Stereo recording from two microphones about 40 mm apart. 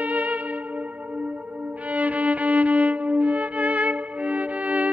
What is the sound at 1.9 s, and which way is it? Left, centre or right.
Violin, right.